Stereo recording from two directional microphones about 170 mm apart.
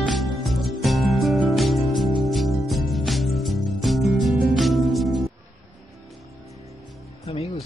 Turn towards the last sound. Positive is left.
turn(degrees=30)  # may be behind; listen again after turning